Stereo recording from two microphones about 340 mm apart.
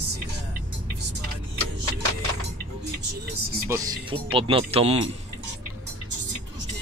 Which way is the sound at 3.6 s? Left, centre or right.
Centre.